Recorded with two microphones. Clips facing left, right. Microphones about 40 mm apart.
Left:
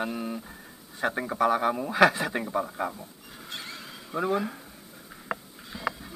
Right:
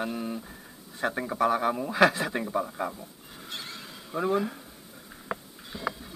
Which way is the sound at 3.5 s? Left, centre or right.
Left.